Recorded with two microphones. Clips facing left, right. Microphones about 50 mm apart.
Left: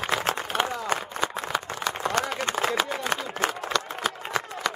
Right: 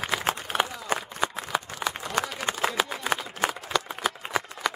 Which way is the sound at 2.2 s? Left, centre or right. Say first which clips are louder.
Right 1 dB; centre.